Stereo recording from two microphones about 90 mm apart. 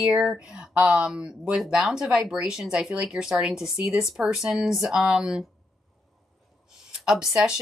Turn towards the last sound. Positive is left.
turn(degrees=-5)  # may be behind; listen again after turning